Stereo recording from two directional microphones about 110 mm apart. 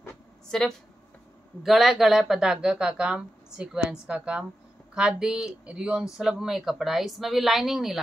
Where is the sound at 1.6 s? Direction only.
Centre (ahead or behind).